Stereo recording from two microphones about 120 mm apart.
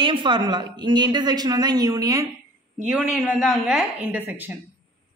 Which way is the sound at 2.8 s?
5° right (ahead or behind).